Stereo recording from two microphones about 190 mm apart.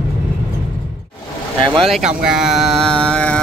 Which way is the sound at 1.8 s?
Centre (ahead or behind).